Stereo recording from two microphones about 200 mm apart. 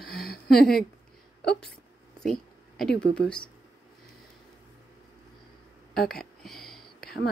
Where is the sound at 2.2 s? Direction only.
Centre (ahead or behind).